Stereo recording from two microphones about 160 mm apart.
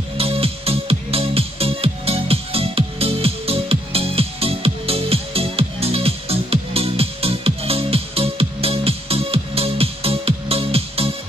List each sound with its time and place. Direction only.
0.2 s music: 35° right (ahead or behind)